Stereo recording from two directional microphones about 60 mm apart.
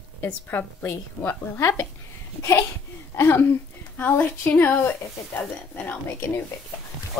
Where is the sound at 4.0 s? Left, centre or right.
Left.